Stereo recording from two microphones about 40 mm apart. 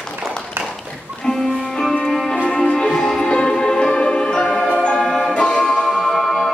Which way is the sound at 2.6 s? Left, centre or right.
Centre.